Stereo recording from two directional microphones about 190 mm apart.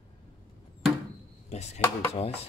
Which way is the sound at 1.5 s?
35° left (ahead or behind).